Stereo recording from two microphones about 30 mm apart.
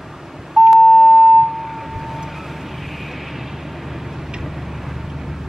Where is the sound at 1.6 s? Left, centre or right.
Centre.